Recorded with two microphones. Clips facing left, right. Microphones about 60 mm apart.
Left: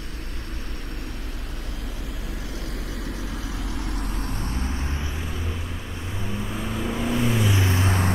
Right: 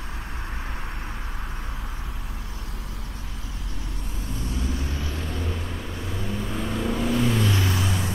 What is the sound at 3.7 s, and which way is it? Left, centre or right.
Vehicle, left.